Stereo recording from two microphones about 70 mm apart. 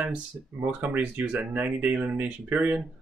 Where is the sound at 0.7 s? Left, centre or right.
Right.